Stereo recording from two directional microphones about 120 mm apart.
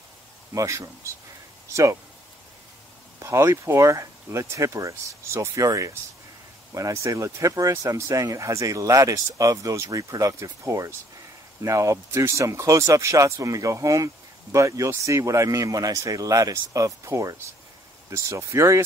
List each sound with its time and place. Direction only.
0.6 s speech: 25° right (ahead or behind)
3.2 s speech: 25° right (ahead or behind)